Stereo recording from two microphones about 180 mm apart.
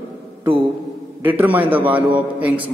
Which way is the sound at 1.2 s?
10° right (ahead or behind).